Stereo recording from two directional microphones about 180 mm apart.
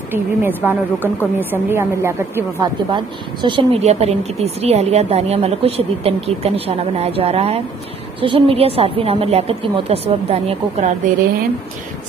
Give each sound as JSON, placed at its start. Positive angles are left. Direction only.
{"t": 0.1, "sound": "a woman's voice", "side_deg": -10}
{"t": 3.4, "sound": "speech", "side_deg": -30}